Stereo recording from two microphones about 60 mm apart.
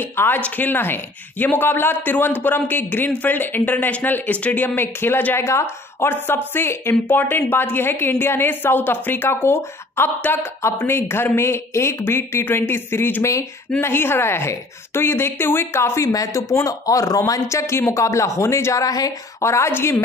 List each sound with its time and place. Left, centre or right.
0.1 s speech: left
5.3 s speech: left
13.2 s speech: left
13.7 s speech: left
16.1 s speech: left
17.3 s speech: left
19.4 s speech: left